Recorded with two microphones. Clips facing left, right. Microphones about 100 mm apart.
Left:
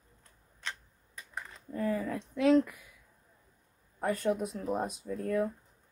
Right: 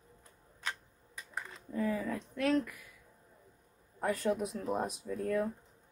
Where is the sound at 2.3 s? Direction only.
15° left (ahead or behind).